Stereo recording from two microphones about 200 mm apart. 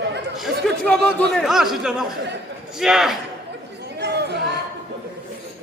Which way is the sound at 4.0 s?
55° right (ahead or behind).